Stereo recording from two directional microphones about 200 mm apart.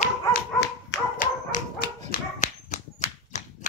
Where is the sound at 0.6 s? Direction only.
60° left (ahead or behind).